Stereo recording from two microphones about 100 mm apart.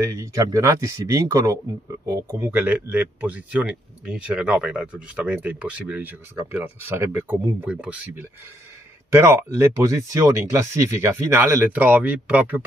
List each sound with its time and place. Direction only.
0.0 s speech: 35° right (ahead or behind)
2.5 s speech: 15° right (ahead or behind)
7.6 s speech: 10° right (ahead or behind)